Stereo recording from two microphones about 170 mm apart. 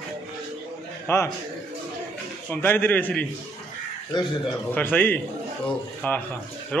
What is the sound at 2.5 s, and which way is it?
Speech, 10° left (ahead or behind).